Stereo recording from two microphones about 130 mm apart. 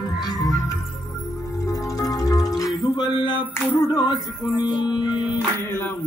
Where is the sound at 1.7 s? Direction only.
25° left (ahead or behind).